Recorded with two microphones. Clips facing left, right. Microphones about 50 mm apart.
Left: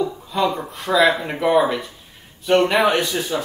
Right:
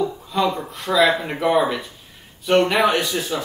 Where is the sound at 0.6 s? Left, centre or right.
Centre.